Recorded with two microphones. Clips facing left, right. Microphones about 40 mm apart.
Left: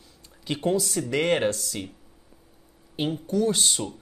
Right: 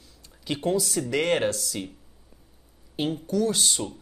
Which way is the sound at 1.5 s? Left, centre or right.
Left.